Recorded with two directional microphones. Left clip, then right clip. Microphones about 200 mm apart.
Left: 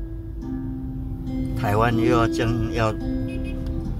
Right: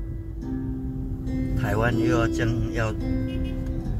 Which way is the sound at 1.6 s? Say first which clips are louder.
Left 4 dB; 50° left (ahead or behind).